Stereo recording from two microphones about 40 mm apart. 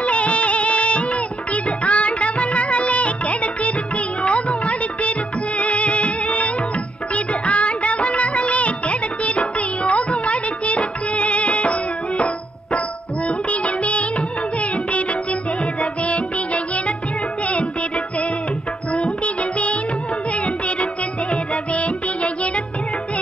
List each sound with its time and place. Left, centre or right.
0.0 s music of bollywood: left
13.5 s music: left